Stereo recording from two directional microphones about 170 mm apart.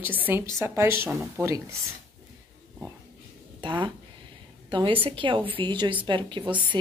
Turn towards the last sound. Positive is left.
turn(degrees=-30)  # may be behind; listen again after turning